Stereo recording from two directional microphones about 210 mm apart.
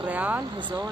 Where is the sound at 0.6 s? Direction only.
20° right (ahead or behind).